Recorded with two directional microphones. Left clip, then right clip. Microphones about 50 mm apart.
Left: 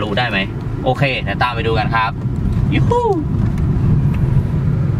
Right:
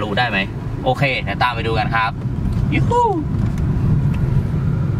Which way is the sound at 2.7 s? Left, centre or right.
Right.